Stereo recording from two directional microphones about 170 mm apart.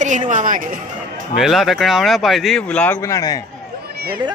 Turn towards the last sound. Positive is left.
turn(degrees=20)  # may be behind; listen again after turning